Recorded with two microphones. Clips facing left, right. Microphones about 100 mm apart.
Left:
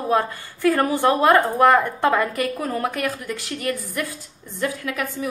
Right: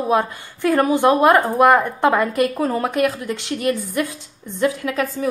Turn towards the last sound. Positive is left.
turn(degrees=-30)  # may be behind; listen again after turning